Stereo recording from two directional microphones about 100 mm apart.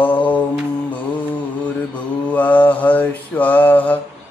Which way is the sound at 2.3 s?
15° left (ahead or behind).